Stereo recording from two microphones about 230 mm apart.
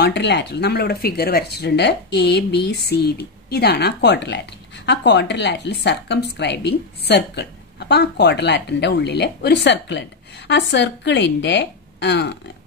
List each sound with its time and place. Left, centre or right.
0.0 s speech: left